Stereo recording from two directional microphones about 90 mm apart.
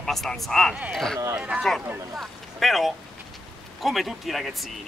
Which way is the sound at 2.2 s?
Centre (ahead or behind).